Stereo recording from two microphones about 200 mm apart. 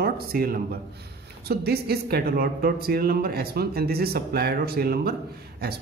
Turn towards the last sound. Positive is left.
turn(degrees=-50)  # may be behind; listen again after turning